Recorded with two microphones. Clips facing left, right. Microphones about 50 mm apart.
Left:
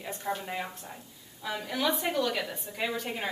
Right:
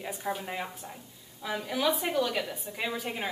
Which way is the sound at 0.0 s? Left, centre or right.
Centre.